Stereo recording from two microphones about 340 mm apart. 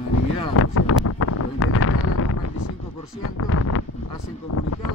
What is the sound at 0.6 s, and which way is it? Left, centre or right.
Wind noise, left.